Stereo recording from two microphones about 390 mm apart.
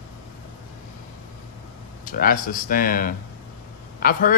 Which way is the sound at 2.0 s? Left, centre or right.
Left.